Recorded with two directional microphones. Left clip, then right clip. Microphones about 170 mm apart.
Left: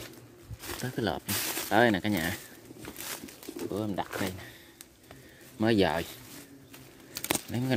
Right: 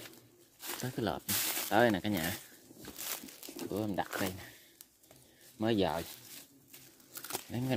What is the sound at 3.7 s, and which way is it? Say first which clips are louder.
Speech: left 2 dB; 35° right (ahead or behind).